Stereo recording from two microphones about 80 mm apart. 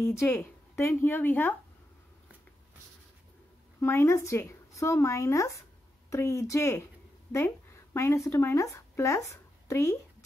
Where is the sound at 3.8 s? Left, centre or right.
Left.